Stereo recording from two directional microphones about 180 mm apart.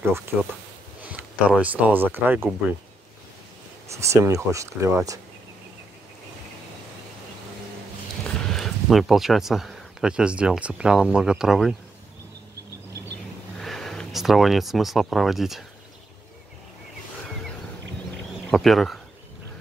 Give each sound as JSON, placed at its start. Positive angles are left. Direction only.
{"t": 1.0, "sound": "speech", "side_deg": -10}
{"t": 3.9, "sound": "speech", "side_deg": -15}
{"t": 8.2, "sound": "speech", "side_deg": 0}
{"t": 13.6, "sound": "speech", "side_deg": 0}
{"t": 18.5, "sound": "speech", "side_deg": 0}